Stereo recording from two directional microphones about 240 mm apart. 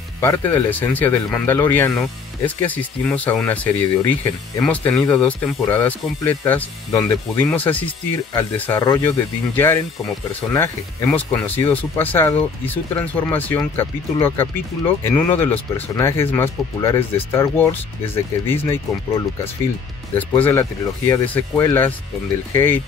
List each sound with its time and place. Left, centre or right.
0.2 s speech: centre